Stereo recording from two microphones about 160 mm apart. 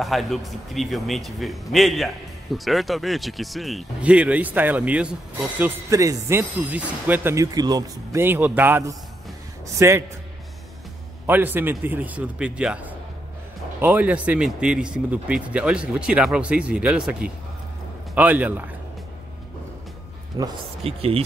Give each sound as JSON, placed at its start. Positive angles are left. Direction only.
{"t": 0.0, "sound": "speech", "side_deg": 0}
{"t": 5.6, "sound": "speech", "side_deg": -20}
{"t": 11.2, "sound": "speech", "side_deg": -10}
{"t": 20.4, "sound": "speech", "side_deg": -25}
{"t": 20.8, "sound": "speech", "side_deg": -40}